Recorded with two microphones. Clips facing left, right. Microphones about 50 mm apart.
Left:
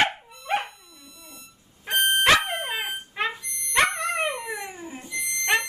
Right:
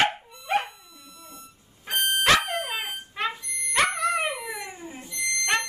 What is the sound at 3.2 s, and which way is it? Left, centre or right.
Alarm, centre.